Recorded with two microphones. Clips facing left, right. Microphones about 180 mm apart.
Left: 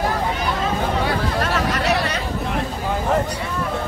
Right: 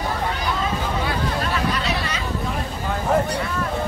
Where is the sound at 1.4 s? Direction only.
75° left (ahead or behind).